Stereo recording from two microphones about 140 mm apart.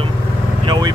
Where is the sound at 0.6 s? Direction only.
30° right (ahead or behind).